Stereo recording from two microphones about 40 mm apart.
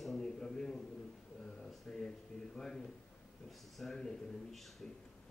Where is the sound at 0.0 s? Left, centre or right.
Centre.